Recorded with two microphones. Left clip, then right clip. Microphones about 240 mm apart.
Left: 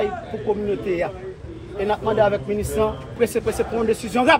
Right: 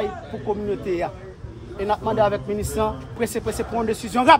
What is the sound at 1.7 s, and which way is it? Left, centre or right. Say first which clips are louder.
Speech: left 2 dB; centre.